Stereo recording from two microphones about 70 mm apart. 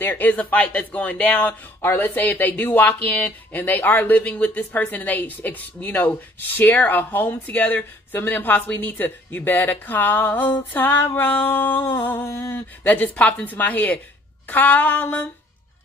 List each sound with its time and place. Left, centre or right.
0.0 s speech: left
1.8 s speech: left
11.1 s a sound: left
12.8 s speech: left